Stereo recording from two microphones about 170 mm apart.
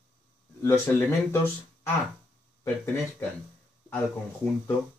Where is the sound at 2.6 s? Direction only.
10° left (ahead or behind).